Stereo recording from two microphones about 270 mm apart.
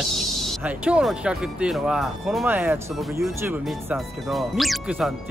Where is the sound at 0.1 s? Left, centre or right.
Centre.